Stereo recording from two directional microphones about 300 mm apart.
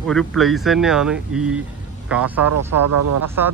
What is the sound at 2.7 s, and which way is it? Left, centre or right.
Speech, right.